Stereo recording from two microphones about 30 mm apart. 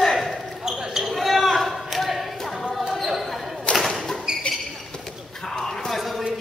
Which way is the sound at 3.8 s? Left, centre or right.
Centre.